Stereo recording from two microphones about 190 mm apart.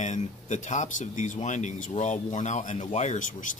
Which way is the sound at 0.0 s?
40° left (ahead or behind).